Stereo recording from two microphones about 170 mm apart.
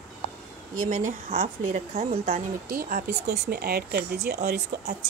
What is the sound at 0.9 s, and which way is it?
Speech, 45° right (ahead or behind).